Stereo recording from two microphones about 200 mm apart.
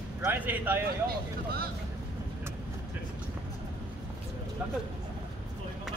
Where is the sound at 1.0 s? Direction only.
50° right (ahead or behind).